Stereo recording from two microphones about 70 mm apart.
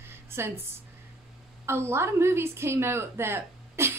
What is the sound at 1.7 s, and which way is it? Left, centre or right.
A woman's voice, right.